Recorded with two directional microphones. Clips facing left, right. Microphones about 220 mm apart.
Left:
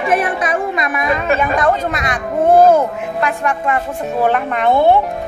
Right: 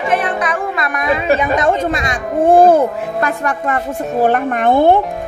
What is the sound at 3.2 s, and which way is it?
A woman's voice, 40° right (ahead or behind).